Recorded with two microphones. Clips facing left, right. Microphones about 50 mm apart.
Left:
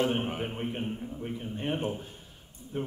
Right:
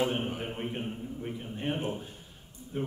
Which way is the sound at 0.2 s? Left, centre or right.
Left.